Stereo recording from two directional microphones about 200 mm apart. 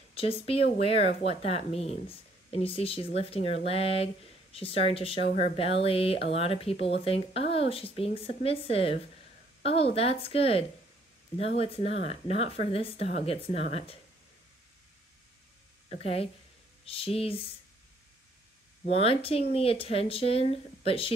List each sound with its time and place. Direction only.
0.1 s speech: 30° left (ahead or behind)
9.6 s a sound: 30° left (ahead or behind)
9.9 s speech: 30° left (ahead or behind)
15.9 s speech: 30° left (ahead or behind)
18.9 s speech: 30° left (ahead or behind)